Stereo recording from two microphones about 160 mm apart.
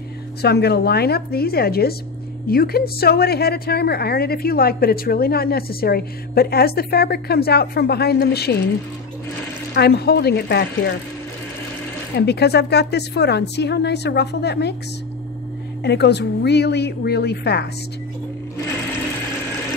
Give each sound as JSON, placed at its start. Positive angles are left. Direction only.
{"t": 0.4, "sound": "a woman's voice", "side_deg": 90}
{"t": 9.8, "sound": "a woman's voice", "side_deg": 85}
{"t": 12.2, "sound": "a woman's voice", "side_deg": 90}
{"t": 15.8, "sound": "a woman's voice", "side_deg": 90}